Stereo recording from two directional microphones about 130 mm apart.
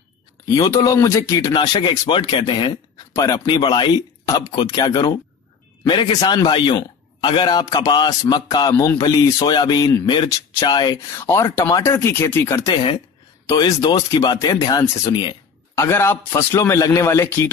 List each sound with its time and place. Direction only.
0.6 s a man's voice: 25° left (ahead or behind)
1.5 s a man's voice: 35° left (ahead or behind)
11.0 s a man's voice: 20° left (ahead or behind)
13.6 s a man's voice: 35° left (ahead or behind)
15.9 s a man's voice: 20° left (ahead or behind)